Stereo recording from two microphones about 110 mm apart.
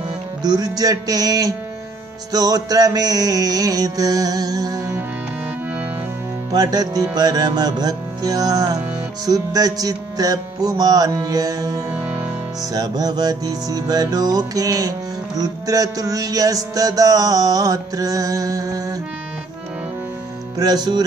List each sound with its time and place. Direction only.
0.4 s music: 35° right (ahead or behind)
6.5 s music: 35° right (ahead or behind)
11.9 s music: 15° right (ahead or behind)
12.7 s music: 35° right (ahead or behind)
20.5 s music: 35° right (ahead or behind)